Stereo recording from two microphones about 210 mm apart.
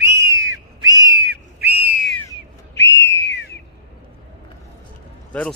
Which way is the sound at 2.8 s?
55° left (ahead or behind).